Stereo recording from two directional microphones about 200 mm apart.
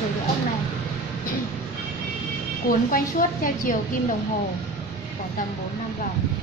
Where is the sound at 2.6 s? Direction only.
45° left (ahead or behind).